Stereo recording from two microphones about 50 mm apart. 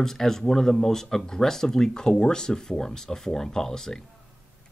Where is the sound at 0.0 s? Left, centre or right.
Centre.